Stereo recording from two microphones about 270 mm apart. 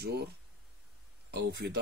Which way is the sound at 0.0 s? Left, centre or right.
Right.